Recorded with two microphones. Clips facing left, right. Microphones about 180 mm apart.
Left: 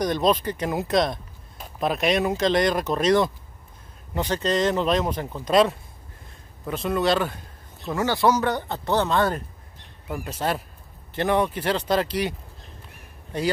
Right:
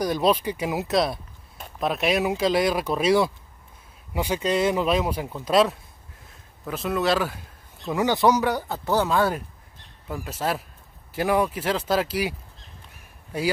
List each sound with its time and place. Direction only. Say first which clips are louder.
0.0 s speech: even; 5° right (ahead or behind)
7.9 s speech: right 1 dB; 15° right (ahead or behind)